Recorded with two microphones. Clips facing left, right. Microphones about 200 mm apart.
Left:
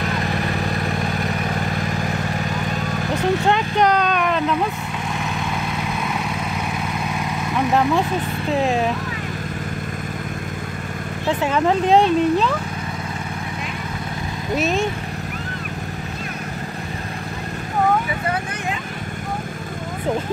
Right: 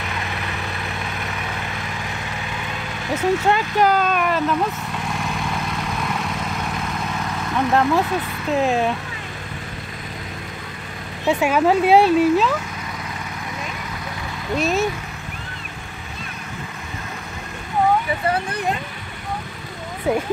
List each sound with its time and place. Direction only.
0.0 s vehicle: 40° left (ahead or behind)
3.4 s speech: 5° right (ahead or behind)
7.5 s speech: centre (ahead or behind)
11.2 s speech: 10° right (ahead or behind)
14.6 s speech: centre (ahead or behind)